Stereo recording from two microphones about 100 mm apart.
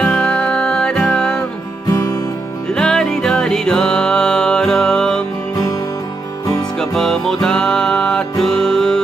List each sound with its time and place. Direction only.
0.0 s music: 5° left (ahead or behind)
1.9 s music: 35° left (ahead or behind)
2.7 s music: 5° left (ahead or behind)
6.8 s music: 5° left (ahead or behind)